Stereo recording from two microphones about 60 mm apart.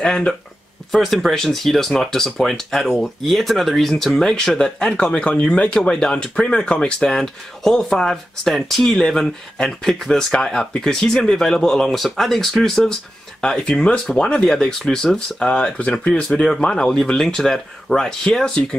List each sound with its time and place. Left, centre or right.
0.0 s speech: centre
0.9 s speech: centre